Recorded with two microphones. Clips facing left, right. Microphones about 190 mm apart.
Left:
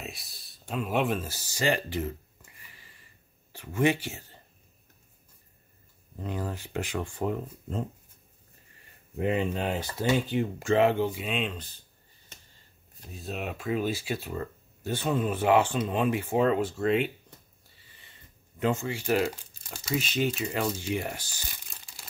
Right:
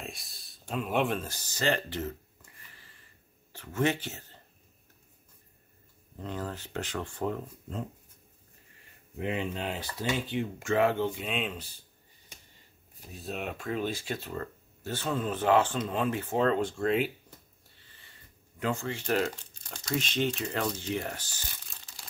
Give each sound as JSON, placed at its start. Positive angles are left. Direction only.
{"t": 0.0, "sound": "a sound", "side_deg": 0}
{"t": 3.5, "sound": "speech", "side_deg": 10}
{"t": 6.1, "sound": "speech", "side_deg": 10}
{"t": 9.2, "sound": "speech", "side_deg": 45}
{"t": 10.9, "sound": "speech", "side_deg": 10}
{"t": 13.0, "sound": "speech", "side_deg": 0}
{"t": 18.6, "sound": "speech", "side_deg": 15}